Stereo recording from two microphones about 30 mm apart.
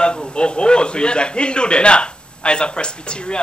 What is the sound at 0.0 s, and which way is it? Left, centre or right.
A man's voice, left.